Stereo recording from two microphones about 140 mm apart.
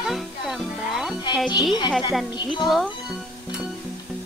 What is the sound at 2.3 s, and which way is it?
Speech, 30° left (ahead or behind).